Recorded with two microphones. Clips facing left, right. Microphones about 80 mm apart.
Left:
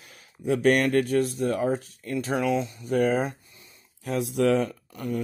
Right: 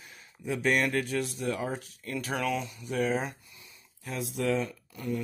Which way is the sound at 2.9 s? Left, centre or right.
Left.